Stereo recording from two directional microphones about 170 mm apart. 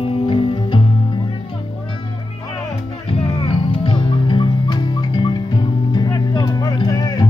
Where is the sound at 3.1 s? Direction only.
35° left (ahead or behind).